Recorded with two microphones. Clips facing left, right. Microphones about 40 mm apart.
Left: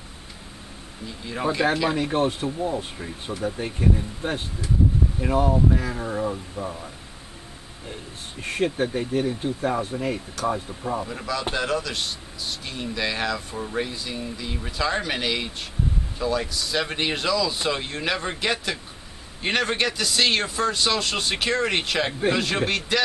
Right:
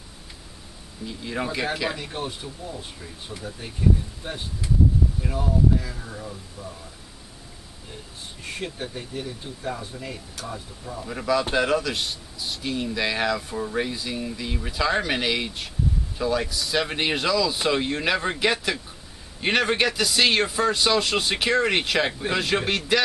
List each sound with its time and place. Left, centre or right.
1.2 s speech: centre
2.1 s speech: left
8.4 s speech: left
10.4 s speech: left
11.1 s a man's voice: centre